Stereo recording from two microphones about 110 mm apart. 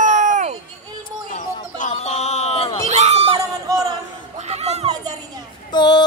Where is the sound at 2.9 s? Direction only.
80° right.